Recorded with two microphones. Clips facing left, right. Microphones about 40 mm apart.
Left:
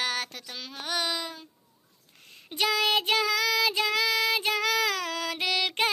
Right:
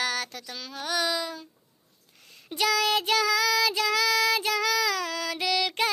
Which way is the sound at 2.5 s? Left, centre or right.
Left.